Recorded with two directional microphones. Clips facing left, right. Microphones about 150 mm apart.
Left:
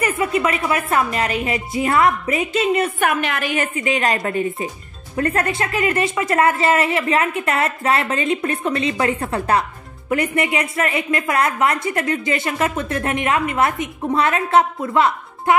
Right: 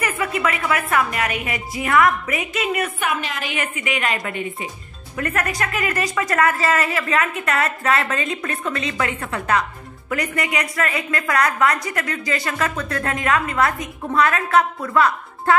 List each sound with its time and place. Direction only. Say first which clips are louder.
0.0 s a woman's voice: left 3 dB; 25° left (ahead or behind)
3.0 s a woman's voice: left 5 dB; 55° left (ahead or behind)
3.5 s a woman's voice: left 3 dB; 35° left (ahead or behind)